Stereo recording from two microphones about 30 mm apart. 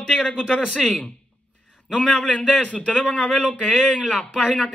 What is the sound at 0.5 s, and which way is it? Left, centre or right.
Speech, left.